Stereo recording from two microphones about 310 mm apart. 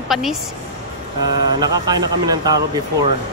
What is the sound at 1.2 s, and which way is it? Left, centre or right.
Speech, centre.